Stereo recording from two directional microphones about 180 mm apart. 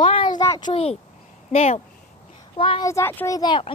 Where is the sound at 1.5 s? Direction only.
35° left (ahead or behind).